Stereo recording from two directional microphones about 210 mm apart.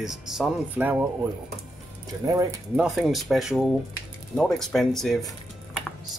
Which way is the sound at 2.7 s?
5° right (ahead or behind).